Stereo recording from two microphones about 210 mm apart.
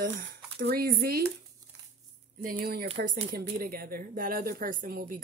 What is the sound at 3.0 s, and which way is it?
Speech, 35° right (ahead or behind).